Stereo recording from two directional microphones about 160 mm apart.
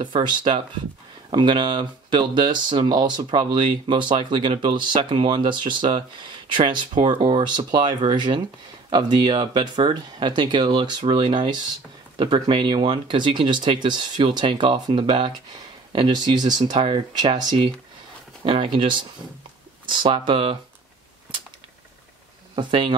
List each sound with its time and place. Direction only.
0.0 s speech: 30° right (ahead or behind)
22.6 s speech: 30° right (ahead or behind)